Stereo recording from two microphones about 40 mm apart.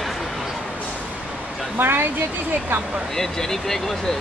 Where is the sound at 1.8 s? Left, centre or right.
Right.